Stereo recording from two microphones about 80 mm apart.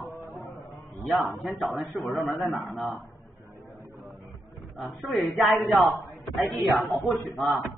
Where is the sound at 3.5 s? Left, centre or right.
Right.